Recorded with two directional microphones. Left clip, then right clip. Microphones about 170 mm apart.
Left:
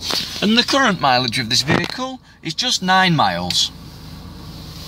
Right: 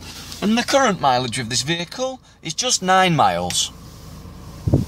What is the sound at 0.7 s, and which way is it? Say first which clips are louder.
Speech: right 3 dB; 5° right (ahead or behind).